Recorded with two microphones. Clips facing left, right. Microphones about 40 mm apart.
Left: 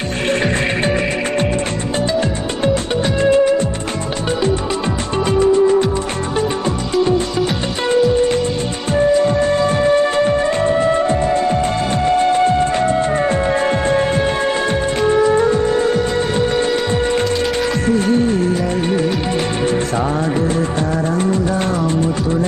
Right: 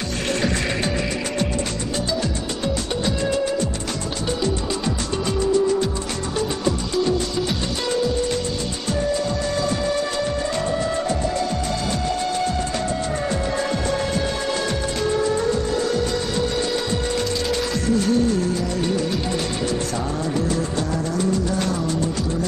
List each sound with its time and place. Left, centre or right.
0.3 s music: left
2.6 s music: left
5.2 s music: left
8.9 s music: left
21.1 s music: left